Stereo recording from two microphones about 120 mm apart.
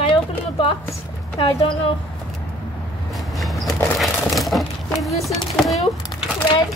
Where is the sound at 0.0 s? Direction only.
45° left (ahead or behind).